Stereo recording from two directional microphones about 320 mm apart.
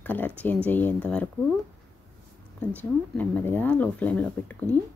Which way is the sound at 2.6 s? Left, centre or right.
Centre.